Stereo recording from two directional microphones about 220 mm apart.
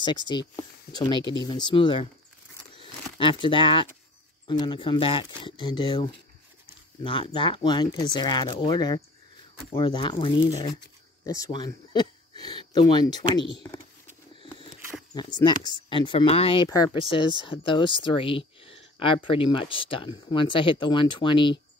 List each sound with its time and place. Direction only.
0.3 s speech: 20° left (ahead or behind)
3.2 s speech: 20° left (ahead or behind)
14.3 s a sound: 25° left (ahead or behind)
15.1 s speech: 20° left (ahead or behind)